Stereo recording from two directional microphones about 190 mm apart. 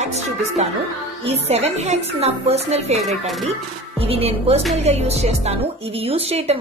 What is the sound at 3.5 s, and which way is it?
Speech, 30° right (ahead or behind).